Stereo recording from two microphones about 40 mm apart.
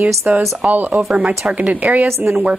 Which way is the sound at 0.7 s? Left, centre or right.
Right.